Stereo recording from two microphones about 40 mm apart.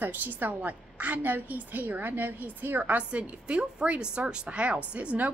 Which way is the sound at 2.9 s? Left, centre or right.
Right.